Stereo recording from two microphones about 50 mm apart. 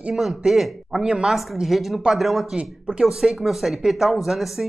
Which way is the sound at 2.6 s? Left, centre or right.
Right.